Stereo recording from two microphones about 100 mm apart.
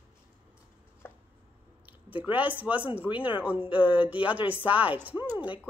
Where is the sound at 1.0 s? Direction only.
20° left (ahead or behind).